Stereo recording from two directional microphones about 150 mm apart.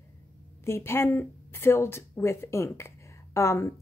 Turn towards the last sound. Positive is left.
turn(degrees=20)  # may be behind; listen again after turning